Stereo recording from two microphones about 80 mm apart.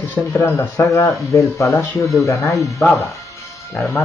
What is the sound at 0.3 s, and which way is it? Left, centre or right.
Speech, left.